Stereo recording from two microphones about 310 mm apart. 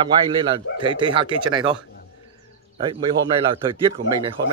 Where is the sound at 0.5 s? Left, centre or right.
Centre.